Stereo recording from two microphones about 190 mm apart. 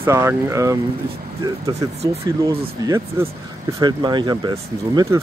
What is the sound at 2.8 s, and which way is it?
Speech, 20° right (ahead or behind).